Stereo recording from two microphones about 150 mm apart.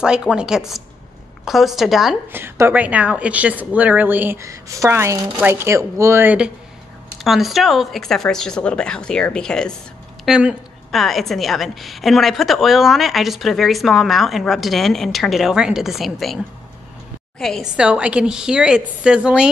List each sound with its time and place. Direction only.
0.0 s a woman's voice: 5° right (ahead or behind)
2.3 s a woman's voice: 15° right (ahead or behind); by 16.3 s centre (ahead or behind)
17.4 s a woman's voice: 5° left (ahead or behind)
17.7 s a woman's voice: 10° right (ahead or behind)